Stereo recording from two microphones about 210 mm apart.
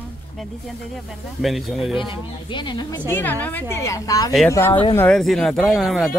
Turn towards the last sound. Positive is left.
turn(degrees=0)  # may be behind; listen again after turning